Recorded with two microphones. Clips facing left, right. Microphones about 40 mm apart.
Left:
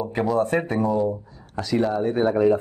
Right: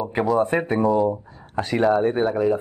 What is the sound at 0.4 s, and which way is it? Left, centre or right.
Speech, centre.